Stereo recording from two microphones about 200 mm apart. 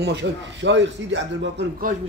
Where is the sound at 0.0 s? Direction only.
60° right (ahead or behind).